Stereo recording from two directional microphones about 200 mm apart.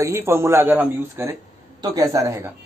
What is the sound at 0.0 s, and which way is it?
Speech, 15° right (ahead or behind).